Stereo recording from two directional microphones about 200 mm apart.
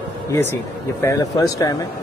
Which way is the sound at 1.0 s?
15° left (ahead or behind).